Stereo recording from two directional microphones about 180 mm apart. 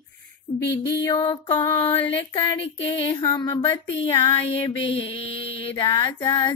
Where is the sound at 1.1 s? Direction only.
25° left (ahead or behind).